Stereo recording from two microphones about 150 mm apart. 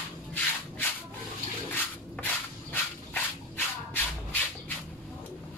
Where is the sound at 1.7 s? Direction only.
10° left (ahead or behind).